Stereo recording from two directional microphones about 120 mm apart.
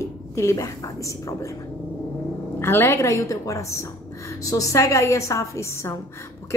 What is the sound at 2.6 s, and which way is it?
Speech, 20° left (ahead or behind).